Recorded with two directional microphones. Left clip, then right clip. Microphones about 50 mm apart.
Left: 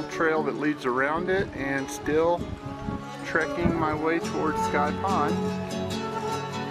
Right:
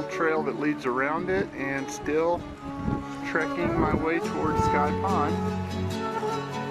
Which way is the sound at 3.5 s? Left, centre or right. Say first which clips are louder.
Even; centre.